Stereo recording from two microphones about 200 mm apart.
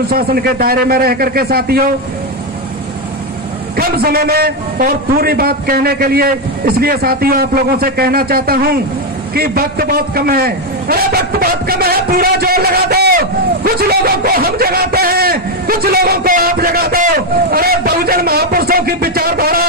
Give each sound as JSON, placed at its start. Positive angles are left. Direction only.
{"t": 0.1, "sound": "a man's voice", "side_deg": -50}
{"t": 3.7, "sound": "a man's voice", "side_deg": -50}